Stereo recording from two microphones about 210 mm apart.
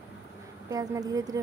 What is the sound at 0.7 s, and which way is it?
Speech, 15° right (ahead or behind).